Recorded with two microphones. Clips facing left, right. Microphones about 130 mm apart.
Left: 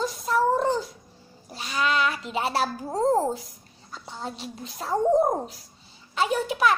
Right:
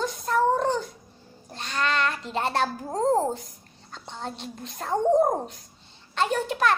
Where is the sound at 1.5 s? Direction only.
5° left (ahead or behind).